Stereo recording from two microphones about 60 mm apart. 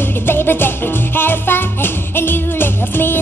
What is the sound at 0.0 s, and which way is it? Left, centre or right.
Music, left.